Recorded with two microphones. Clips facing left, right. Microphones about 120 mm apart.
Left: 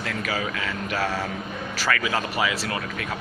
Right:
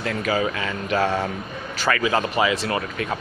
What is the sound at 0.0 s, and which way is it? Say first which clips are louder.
Speech: right 5 dB; 25° right (ahead or behind).